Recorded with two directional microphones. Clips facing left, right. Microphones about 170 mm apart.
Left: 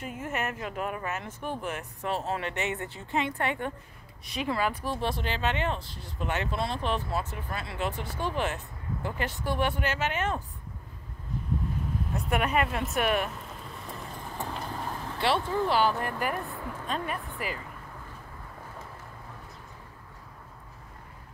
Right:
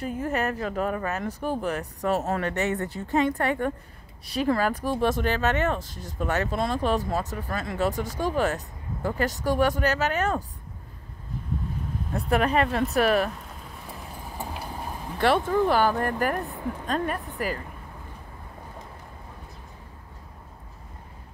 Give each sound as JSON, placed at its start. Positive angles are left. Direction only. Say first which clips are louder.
{"t": 0.0, "sound": "speech", "louder": "right 6 dB", "side_deg": -35}
{"t": 12.1, "sound": "speech", "louder": "right 5 dB", "side_deg": -35}
{"t": 13.8, "sound": "vehicle", "louder": "even", "side_deg": -5}
{"t": 15.1, "sound": "speech", "louder": "right 6 dB", "side_deg": -50}
{"t": 16.4, "sound": "a woman's voice", "louder": "right 5 dB", "side_deg": -15}
{"t": 16.8, "sound": "speech", "louder": "right 5 dB", "side_deg": -40}